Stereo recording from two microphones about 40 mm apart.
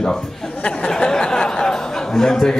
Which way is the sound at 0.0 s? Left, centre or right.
Centre.